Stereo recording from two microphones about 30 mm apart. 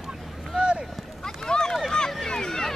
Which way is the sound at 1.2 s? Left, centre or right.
Left.